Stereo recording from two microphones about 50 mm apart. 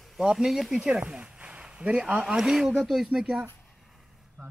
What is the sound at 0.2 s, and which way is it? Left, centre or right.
Speech, centre.